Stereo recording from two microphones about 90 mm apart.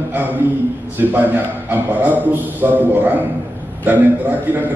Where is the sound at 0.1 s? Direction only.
20° right (ahead or behind).